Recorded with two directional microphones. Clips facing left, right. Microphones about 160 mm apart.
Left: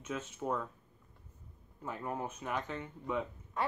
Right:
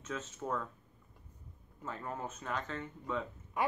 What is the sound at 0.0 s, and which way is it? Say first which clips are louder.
Speech: left 2 dB; 10° left (ahead or behind).